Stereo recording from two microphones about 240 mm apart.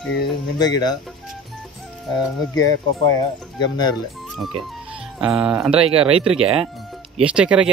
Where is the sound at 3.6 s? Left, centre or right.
Centre.